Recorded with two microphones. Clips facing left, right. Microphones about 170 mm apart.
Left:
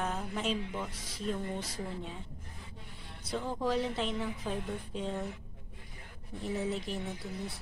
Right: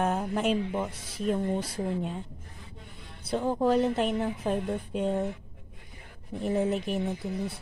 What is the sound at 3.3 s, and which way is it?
A woman's voice, 45° right (ahead or behind).